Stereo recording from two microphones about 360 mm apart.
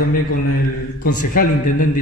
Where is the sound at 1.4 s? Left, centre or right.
Left.